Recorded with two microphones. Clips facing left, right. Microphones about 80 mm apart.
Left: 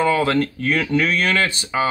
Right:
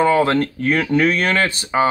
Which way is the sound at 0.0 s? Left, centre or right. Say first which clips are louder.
Right 3 dB; right.